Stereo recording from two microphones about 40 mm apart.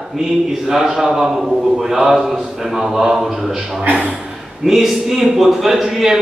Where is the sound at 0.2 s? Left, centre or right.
Centre.